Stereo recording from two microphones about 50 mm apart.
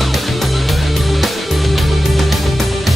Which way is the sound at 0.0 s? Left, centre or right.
Centre.